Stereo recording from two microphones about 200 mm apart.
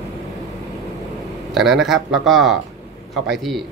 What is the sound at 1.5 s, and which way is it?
Speech, centre (ahead or behind).